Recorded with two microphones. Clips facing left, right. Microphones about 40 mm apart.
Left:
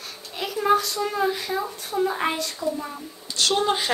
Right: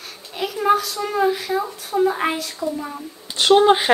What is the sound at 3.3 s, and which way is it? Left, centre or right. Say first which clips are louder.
Speech: right 9 dB; right.